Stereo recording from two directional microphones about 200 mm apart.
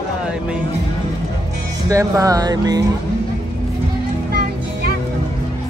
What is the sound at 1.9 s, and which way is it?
Speech, 15° right (ahead or behind).